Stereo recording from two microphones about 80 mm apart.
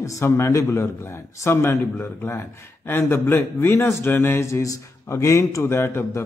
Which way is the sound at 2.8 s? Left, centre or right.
Left.